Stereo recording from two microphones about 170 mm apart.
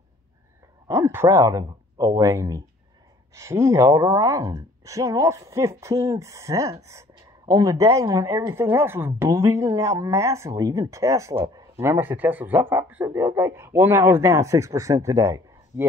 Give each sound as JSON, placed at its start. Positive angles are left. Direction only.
{"t": 0.8, "sound": "a woman's voice", "side_deg": -15}
{"t": 11.4, "sound": "a sound", "side_deg": -35}
{"t": 11.8, "sound": "a woman's voice", "side_deg": -15}